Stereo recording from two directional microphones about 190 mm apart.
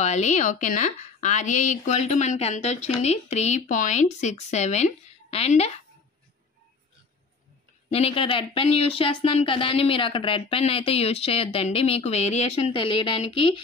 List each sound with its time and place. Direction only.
0.0 s a woman's voice: 35° left (ahead or behind)
7.9 s speech: 30° left (ahead or behind)